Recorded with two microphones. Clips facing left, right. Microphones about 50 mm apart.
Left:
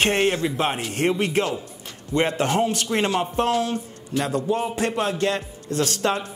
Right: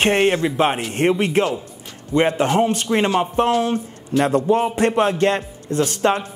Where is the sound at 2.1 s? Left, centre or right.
Centre.